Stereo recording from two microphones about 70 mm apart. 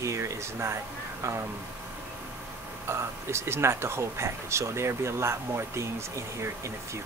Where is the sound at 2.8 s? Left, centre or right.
Right.